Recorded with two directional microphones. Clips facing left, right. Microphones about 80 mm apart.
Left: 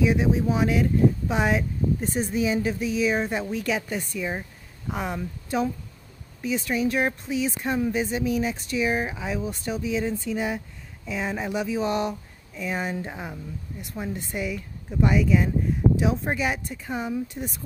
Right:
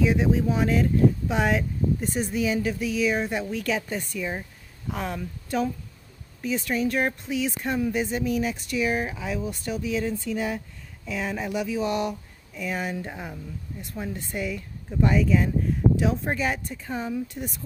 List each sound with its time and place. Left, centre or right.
0.0 s speech: centre